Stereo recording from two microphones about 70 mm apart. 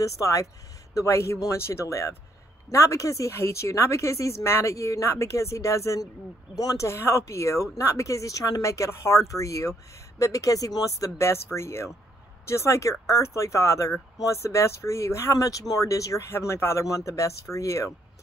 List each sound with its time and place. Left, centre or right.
0.0 s speech: left
6.5 s speech: left
6.9 s speech: left
11.1 s speech: left
16.8 s speech: left